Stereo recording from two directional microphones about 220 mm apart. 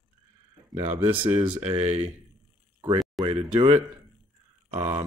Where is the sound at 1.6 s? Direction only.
25° right (ahead or behind).